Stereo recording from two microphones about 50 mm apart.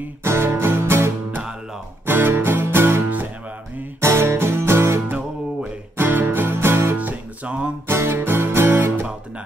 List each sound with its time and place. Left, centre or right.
0.2 s music: right
4.0 s music: right
5.1 s music: right
7.0 s music: right
7.9 s music: right